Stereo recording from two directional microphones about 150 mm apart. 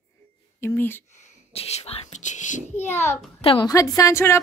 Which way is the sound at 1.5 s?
45° left (ahead or behind).